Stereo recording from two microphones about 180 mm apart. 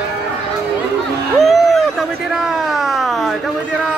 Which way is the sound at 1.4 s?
Centre (ahead or behind).